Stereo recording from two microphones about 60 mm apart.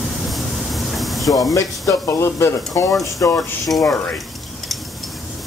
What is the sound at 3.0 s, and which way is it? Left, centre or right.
Speech, left.